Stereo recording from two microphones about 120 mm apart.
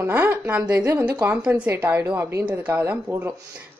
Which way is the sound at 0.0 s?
15° right (ahead or behind).